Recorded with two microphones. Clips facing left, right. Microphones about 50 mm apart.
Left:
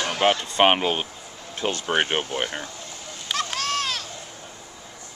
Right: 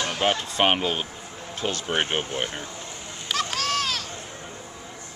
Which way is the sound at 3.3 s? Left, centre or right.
Centre.